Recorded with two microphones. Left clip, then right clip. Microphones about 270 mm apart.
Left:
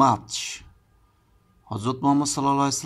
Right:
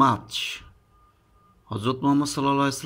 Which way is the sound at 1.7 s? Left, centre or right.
Centre.